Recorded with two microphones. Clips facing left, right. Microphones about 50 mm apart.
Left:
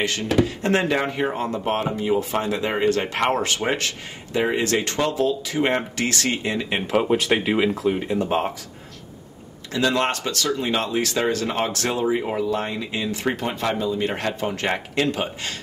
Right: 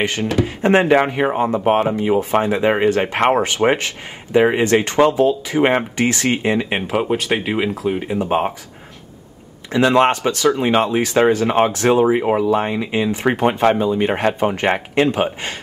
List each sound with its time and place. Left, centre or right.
0.0 s speech: right
6.9 s speech: centre
9.7 s speech: right
14.1 s speech: right